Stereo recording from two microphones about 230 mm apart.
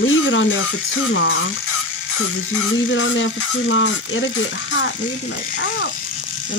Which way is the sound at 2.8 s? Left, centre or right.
Left.